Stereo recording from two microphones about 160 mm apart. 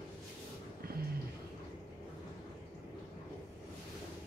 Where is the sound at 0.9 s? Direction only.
70° right (ahead or behind).